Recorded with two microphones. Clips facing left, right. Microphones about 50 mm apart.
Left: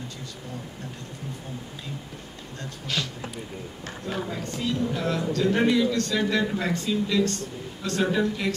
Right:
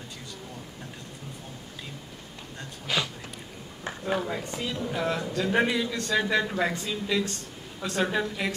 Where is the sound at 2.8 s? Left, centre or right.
Centre.